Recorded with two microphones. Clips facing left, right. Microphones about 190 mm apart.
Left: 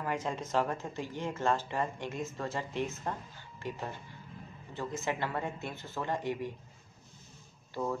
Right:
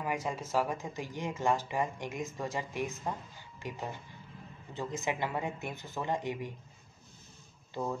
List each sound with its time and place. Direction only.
0.0 s speech: 10° right (ahead or behind)
7.7 s speech: 15° right (ahead or behind)